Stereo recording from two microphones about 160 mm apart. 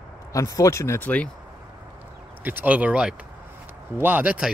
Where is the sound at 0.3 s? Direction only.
20° left (ahead or behind).